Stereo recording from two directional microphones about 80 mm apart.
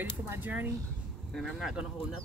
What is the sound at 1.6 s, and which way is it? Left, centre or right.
Speech, centre.